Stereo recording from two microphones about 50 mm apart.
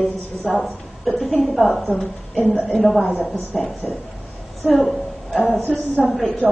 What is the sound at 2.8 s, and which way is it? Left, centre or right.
A woman's voice, centre.